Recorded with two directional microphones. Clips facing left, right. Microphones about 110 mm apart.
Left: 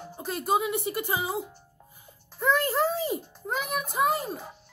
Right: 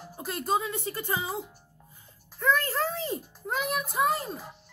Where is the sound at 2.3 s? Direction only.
20° left (ahead or behind).